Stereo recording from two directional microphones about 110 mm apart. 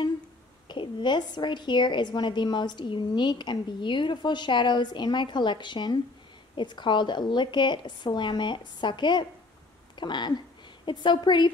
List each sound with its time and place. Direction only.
0.7 s a woman's voice: 45° left (ahead or behind)